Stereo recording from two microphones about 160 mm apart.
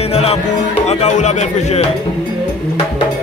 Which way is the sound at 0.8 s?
45° left (ahead or behind).